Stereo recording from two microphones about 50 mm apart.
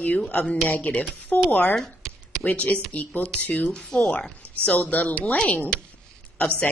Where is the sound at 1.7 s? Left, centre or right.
Centre.